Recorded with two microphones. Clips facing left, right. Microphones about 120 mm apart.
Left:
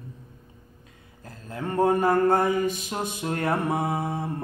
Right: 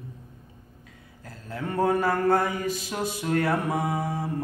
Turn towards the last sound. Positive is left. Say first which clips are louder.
# left 1 dB
turn(degrees=25)  # may be behind; listen again after turning